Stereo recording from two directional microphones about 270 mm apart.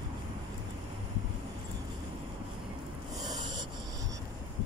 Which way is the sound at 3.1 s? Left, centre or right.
Centre.